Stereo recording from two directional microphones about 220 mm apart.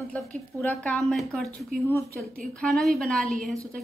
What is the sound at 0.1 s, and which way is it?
Speech, 5° left (ahead or behind).